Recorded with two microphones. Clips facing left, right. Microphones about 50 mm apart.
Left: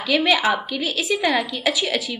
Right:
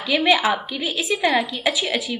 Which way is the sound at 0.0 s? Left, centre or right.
Right.